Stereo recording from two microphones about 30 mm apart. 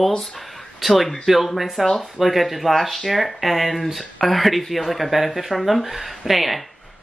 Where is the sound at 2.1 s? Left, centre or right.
Centre.